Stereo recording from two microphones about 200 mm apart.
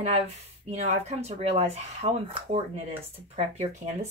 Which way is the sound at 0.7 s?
35° right (ahead or behind).